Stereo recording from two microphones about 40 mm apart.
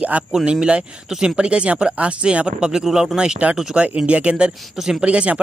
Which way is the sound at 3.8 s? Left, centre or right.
Right.